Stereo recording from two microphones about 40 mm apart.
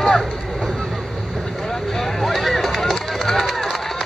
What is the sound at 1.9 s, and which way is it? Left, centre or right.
Run, centre.